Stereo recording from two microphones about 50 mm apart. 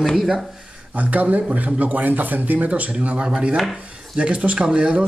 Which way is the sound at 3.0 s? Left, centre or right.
Centre.